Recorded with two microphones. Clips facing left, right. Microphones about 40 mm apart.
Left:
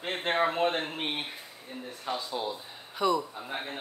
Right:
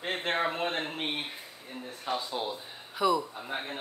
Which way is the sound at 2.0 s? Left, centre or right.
Centre.